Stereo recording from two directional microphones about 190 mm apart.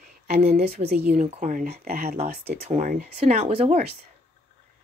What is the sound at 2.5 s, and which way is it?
Speech, 35° right (ahead or behind).